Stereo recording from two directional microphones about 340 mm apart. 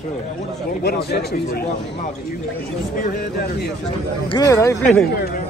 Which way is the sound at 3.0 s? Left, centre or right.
Left.